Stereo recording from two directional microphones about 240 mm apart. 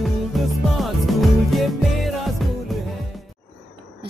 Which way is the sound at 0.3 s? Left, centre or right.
Centre.